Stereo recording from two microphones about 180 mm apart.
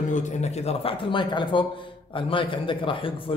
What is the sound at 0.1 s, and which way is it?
A man's voice, 40° left (ahead or behind).